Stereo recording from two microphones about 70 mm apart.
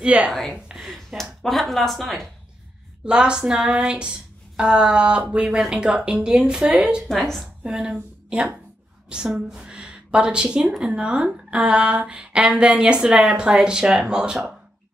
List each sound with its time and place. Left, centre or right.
0.0 s speech: centre
0.3 s speech: centre
0.7 s a sound: centre
1.4 s speech: centre
3.1 s speech: centre
7.1 s speech: centre
7.6 s a woman's voice: centre